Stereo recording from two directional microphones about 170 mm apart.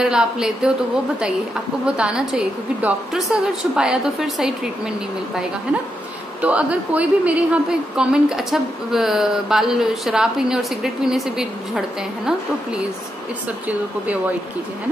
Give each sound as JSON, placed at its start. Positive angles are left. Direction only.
{"t": 0.0, "sound": "a woman's voice", "side_deg": -5}
{"t": 1.9, "sound": "a woman's voice", "side_deg": -5}
{"t": 6.4, "sound": "a woman's voice", "side_deg": -10}